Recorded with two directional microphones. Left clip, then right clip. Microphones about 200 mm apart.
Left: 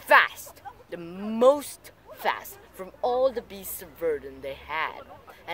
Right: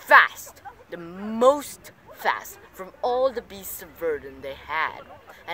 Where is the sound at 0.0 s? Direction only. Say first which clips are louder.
Right 4 dB; 5° left (ahead or behind).